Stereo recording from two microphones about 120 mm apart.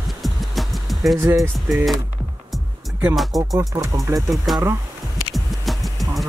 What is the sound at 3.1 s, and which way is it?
Speech, centre (ahead or behind).